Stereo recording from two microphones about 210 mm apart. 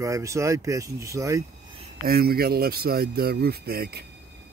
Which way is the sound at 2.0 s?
45° right (ahead or behind).